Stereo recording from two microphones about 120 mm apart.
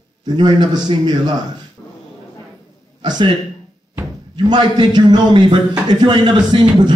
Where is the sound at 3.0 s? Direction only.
40° right (ahead or behind).